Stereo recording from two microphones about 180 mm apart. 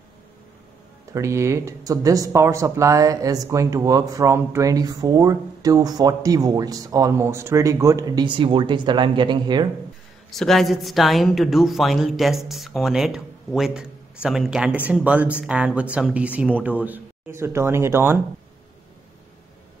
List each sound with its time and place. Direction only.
1.1 s speech: 15° right (ahead or behind)
10.3 s a woman's voice: centre (ahead or behind)